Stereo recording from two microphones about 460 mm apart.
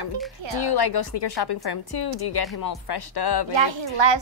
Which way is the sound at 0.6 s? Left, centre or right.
Left.